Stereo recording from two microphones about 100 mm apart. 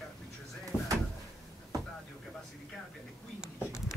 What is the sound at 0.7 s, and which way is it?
Drawer open or close, 10° right (ahead or behind).